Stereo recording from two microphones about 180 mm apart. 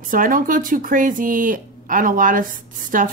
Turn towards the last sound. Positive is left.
turn(degrees=-50)  # may be behind; listen again after turning